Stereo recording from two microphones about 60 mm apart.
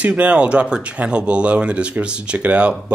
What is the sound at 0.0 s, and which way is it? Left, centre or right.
Speech, right.